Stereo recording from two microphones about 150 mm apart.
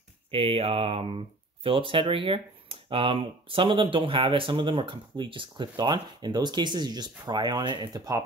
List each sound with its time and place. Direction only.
0.3 s speech: 40° right (ahead or behind)